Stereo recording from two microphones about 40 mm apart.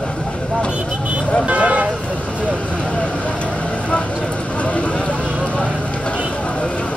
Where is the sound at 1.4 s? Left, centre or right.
Right.